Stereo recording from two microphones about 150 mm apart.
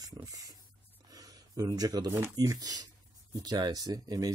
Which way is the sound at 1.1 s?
25° right (ahead or behind).